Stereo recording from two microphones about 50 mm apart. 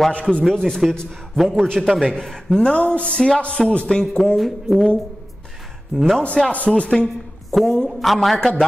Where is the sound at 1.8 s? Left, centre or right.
Centre.